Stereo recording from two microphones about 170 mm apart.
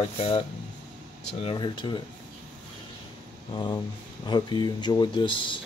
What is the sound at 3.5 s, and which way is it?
Speech, 25° left (ahead or behind).